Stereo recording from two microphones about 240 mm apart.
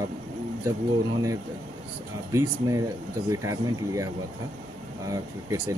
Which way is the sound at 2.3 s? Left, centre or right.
Centre.